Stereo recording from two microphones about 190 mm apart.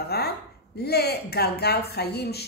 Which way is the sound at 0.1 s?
55° left (ahead or behind).